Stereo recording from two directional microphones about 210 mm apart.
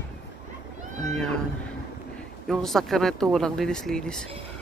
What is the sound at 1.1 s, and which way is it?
Speech, 5° left (ahead or behind).